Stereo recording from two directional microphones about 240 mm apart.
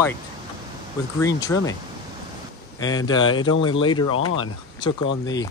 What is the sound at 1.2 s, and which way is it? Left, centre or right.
Speech, centre.